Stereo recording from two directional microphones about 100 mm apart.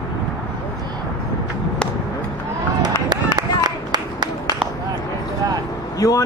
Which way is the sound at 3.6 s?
45° right (ahead or behind).